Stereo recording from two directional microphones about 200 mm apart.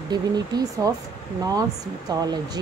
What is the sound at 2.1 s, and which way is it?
Speech, 20° right (ahead or behind).